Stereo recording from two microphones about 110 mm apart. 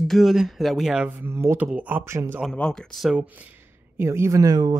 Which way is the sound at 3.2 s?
15° right (ahead or behind).